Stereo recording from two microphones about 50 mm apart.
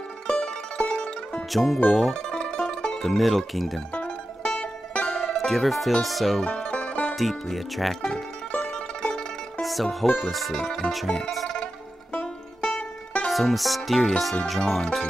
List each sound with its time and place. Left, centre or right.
0.3 s music: left
0.8 s music: centre
1.5 s music: centre
2.3 s music: centre
3.0 s music: centre
4.6 s music: left
5.3 s music: centre
6.7 s music: left
7.2 s music: centre
8.5 s music: left
9.1 s music: centre
12.7 s music: left
13.3 s music: centre